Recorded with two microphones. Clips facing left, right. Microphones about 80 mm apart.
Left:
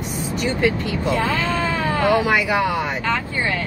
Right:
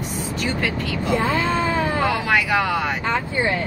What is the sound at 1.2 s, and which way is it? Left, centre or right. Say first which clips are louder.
Speech: right 3 dB; right.